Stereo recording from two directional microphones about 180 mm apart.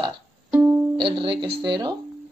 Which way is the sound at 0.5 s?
10° right (ahead or behind).